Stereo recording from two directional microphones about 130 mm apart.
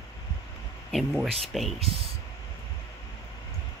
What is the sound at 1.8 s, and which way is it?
Speech, 45° right (ahead or behind).